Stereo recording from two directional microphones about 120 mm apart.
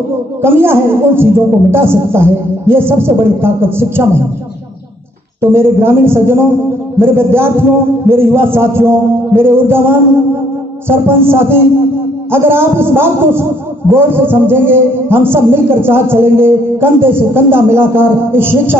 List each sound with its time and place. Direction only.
0.4 s a man's voice: 20° right (ahead or behind)
5.4 s a man's voice: 20° right (ahead or behind)